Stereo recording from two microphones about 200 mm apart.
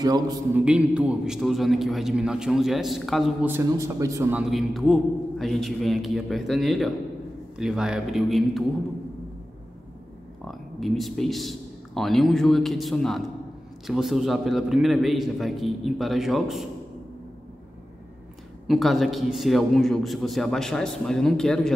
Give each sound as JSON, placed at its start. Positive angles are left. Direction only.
{"t": 0.0, "sound": "a sound", "side_deg": -20}
{"t": 0.6, "sound": "a man's voice", "side_deg": -5}
{"t": 3.5, "sound": "a man's voice", "side_deg": -15}
{"t": 10.4, "sound": "a man's voice", "side_deg": 0}
{"t": 18.7, "sound": "a man's voice", "side_deg": 0}